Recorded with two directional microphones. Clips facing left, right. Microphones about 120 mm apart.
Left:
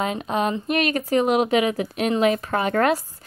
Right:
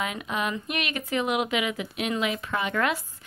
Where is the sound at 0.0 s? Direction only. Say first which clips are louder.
Left 6 dB; 35° left (ahead or behind).